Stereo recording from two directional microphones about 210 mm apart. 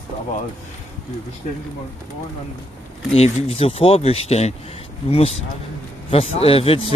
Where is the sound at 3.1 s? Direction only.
30° left (ahead or behind).